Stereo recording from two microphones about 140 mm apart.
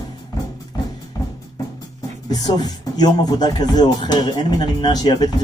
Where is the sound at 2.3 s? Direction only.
30° left (ahead or behind).